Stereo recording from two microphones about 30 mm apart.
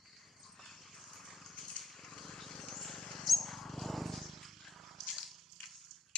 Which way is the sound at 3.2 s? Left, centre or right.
Centre.